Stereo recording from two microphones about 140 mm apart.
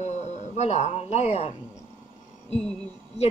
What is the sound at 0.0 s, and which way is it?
A man's voice, 55° left (ahead or behind).